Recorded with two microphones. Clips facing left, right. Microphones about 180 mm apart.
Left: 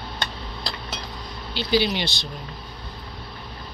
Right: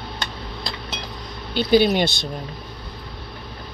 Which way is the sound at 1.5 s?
50° right (ahead or behind).